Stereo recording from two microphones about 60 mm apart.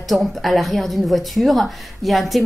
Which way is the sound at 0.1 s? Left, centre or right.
Centre.